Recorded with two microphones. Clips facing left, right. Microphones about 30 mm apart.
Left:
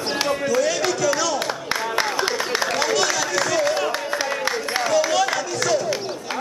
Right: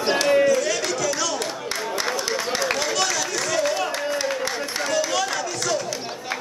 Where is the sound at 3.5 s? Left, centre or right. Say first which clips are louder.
Even; centre.